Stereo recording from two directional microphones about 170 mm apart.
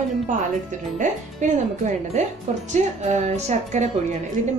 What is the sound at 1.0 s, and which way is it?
A woman's voice, 45° right (ahead or behind).